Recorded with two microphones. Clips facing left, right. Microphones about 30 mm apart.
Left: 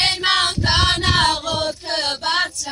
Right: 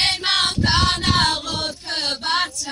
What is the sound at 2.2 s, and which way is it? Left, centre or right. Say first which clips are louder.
Female singing: even; left.